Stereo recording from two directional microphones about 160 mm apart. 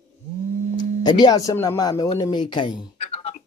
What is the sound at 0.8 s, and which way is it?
Speech, 25° left (ahead or behind).